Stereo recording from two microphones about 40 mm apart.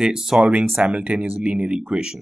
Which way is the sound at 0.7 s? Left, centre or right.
Right.